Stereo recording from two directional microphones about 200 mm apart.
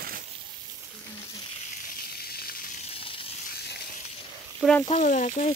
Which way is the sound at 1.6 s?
40° left (ahead or behind).